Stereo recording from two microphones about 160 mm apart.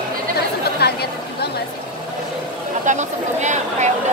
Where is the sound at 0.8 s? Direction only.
90° left.